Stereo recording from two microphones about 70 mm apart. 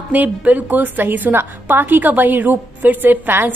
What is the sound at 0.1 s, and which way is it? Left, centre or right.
A woman's voice, right.